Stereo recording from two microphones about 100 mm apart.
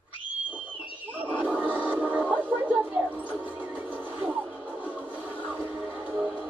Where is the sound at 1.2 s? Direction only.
15° right (ahead or behind).